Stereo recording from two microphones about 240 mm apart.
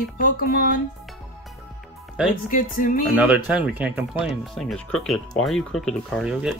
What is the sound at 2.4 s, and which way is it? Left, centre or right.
Speech, left.